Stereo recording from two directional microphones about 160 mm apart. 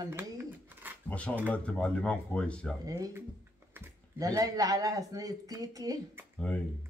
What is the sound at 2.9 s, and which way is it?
A woman's voice, 20° right (ahead or behind).